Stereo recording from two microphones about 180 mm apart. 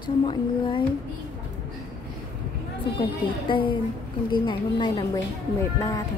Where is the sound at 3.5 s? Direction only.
30° left (ahead or behind).